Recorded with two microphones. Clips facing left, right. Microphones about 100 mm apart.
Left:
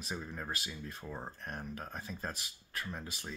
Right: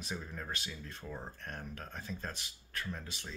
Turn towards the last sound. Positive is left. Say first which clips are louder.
# even
turn(degrees=10)  # may be behind; listen again after turning